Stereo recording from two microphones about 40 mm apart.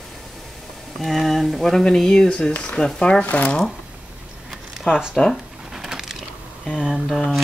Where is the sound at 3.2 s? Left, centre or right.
Left.